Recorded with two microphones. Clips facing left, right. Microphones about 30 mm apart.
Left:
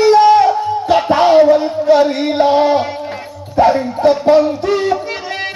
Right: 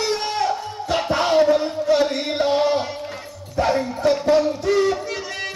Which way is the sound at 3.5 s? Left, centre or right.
Centre.